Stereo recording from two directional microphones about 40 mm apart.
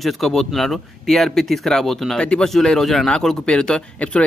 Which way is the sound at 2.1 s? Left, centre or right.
Left.